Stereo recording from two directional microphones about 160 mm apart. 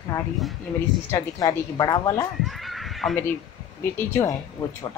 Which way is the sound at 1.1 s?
20° left (ahead or behind).